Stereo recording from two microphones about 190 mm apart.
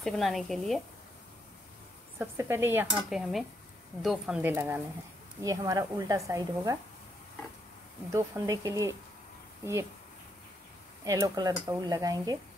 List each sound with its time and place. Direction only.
0.0 s speech: centre (ahead or behind)
2.1 s a woman's voice: 15° right (ahead or behind)
8.1 s a woman's voice: 15° right (ahead or behind)
11.1 s speech: 15° right (ahead or behind)